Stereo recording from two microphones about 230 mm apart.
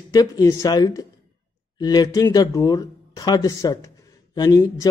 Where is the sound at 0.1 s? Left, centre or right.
Centre.